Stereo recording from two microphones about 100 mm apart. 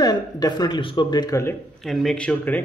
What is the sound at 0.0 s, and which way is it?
Speech, 40° left (ahead or behind).